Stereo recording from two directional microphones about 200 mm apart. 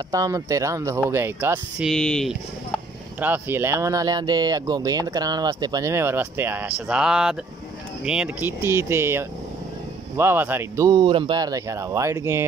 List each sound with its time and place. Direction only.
0.1 s speech: 15° right (ahead or behind)
1.9 s speech: centre (ahead or behind)
3.2 s speech: 10° right (ahead or behind)